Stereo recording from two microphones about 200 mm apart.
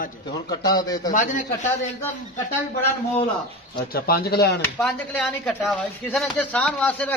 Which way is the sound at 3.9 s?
50° left (ahead or behind).